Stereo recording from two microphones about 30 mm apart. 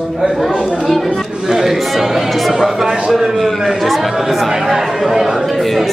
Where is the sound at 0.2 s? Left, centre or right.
Centre.